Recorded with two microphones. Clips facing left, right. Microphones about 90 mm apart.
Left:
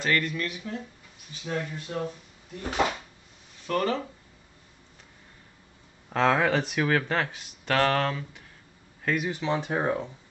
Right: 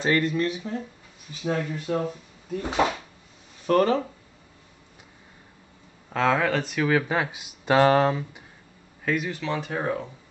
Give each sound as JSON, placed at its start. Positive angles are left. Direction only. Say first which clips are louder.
{"t": 0.0, "sound": "speech", "louder": "right 5 dB", "side_deg": -25}
{"t": 1.4, "sound": "speech", "louder": "right 5 dB", "side_deg": -45}
{"t": 3.6, "sound": "speech", "louder": "right 6 dB", "side_deg": -40}
{"t": 6.1, "sound": "speech", "louder": "even", "side_deg": 5}
{"t": 6.9, "sound": "speech", "louder": "right 5 dB", "side_deg": -10}
{"t": 9.0, "sound": "speech", "louder": "right 1 dB", "side_deg": 0}
{"t": 9.3, "sound": "speech", "louder": "left 1 dB", "side_deg": 20}